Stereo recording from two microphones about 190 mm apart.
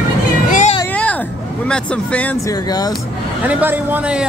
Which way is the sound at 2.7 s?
20° left (ahead or behind).